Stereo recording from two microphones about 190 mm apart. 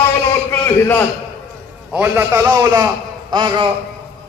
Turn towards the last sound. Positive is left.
turn(degrees=-25)  # may be behind; listen again after turning